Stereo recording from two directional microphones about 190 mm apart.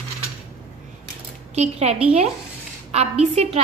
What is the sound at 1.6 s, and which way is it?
A woman's voice, 35° right (ahead or behind).